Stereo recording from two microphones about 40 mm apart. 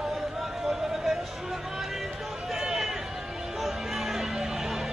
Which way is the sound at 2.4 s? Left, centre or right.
Centre.